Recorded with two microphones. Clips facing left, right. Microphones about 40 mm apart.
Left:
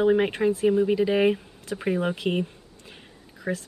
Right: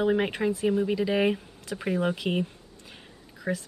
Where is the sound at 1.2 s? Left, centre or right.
Centre.